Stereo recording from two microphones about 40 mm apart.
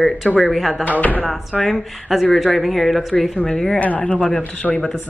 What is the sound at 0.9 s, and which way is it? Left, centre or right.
Speech, left.